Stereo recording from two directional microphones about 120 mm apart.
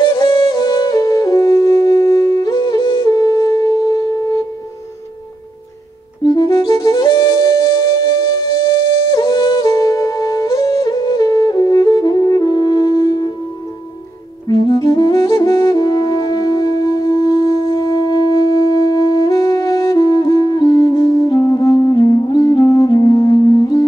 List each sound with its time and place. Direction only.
0.0 s music: 40° left (ahead or behind)
6.2 s music: 35° left (ahead or behind)
14.5 s music: 45° left (ahead or behind)
15.1 s music: 30° left (ahead or behind)